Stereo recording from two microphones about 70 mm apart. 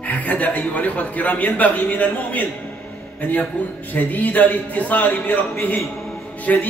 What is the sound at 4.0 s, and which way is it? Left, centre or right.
A man's voice, left.